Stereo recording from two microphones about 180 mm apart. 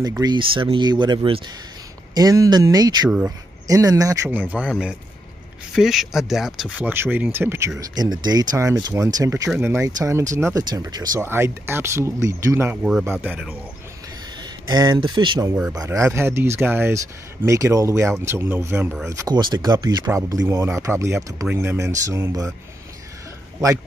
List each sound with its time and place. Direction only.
0.6 s speech: 25° right (ahead or behind)
3.1 s speech: 10° right (ahead or behind)
3.6 s a man's voice: 20° right (ahead or behind)
14.7 s speech: 25° right (ahead or behind)
19.2 s speech: 25° right (ahead or behind)